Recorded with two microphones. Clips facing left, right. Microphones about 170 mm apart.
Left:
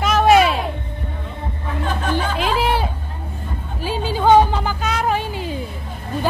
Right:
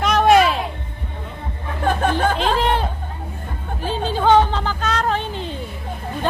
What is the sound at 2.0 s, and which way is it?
Chatter, 50° right (ahead or behind).